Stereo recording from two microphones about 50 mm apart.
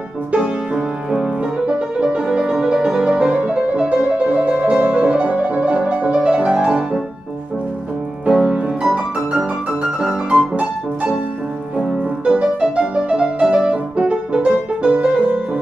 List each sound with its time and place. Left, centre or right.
0.3 s music: centre
8.3 s music: centre
9.7 s music: centre
12.5 s music: centre
13.9 s music: right